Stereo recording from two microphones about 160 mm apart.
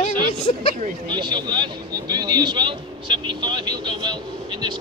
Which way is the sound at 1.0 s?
30° right (ahead or behind).